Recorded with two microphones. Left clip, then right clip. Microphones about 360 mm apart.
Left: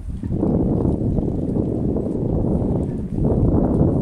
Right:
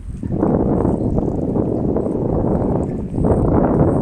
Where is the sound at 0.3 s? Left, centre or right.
Right.